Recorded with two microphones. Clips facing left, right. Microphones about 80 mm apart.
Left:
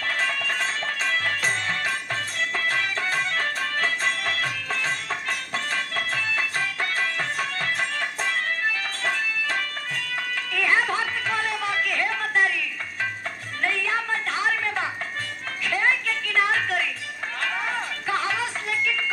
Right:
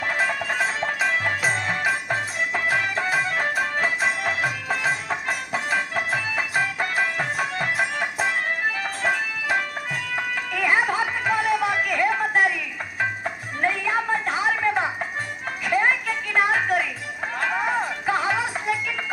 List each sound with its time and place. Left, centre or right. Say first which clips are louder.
0.2 s music: right 3 dB; centre
10.5 s chatter: right 1 dB; centre
13.6 s a sound: right 2 dB; centre
15.6 s music: right 2 dB; centre